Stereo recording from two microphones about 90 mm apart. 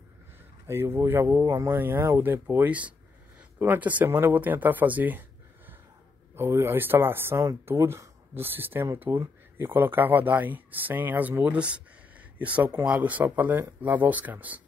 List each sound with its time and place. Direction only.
0.7 s speech: 30° right (ahead or behind)
6.3 s speech: 25° right (ahead or behind)
12.8 s speech: 15° right (ahead or behind)